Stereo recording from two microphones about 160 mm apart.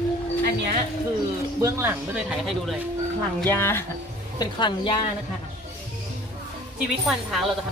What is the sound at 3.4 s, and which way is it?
Speech, 15° left (ahead or behind).